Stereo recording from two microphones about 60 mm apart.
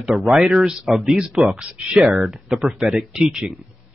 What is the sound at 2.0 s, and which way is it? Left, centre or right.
Speech, right.